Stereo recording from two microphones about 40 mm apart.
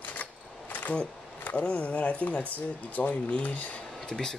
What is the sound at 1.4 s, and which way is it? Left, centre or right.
Speech, left.